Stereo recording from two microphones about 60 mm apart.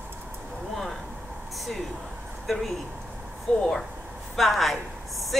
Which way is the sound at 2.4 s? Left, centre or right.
Centre.